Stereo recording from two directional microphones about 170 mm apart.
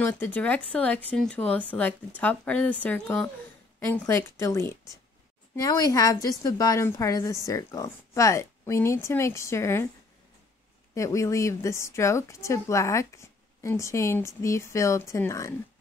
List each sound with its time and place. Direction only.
0.0 s a woman's voice: 10° left (ahead or behind)
11.0 s a woman's voice: 20° left (ahead or behind)